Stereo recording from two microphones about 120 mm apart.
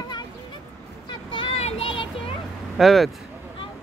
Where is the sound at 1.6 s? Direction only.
55° left (ahead or behind).